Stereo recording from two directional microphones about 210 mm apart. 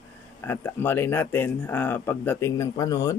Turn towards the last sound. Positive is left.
turn(degrees=15)  # may be behind; listen again after turning